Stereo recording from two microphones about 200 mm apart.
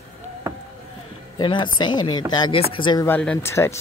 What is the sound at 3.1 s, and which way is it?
Speech, 10° left (ahead or behind).